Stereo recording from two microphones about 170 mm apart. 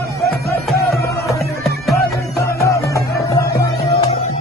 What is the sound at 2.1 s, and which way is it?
Music, 20° left (ahead or behind).